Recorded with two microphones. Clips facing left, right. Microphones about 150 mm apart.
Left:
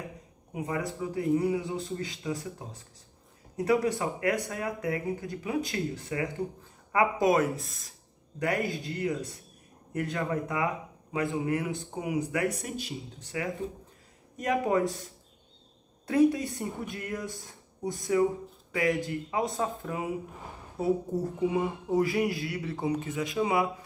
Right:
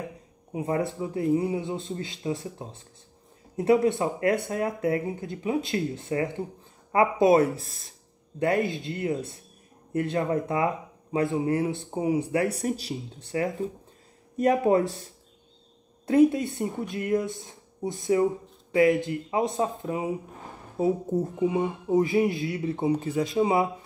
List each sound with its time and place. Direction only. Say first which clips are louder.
0.5 s a man's voice: right 5 dB; 30° right (ahead or behind)
16.1 s speech: right 4 dB; 25° right (ahead or behind)